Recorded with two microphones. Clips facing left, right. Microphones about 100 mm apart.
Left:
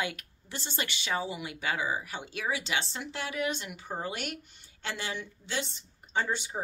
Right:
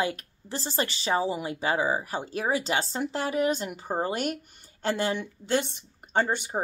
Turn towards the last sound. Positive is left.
turn(degrees=-50)  # may be behind; listen again after turning